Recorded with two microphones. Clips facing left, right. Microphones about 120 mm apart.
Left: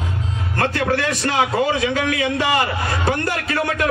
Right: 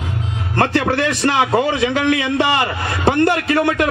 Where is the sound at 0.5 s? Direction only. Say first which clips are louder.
Right 3 dB; 30° right (ahead or behind).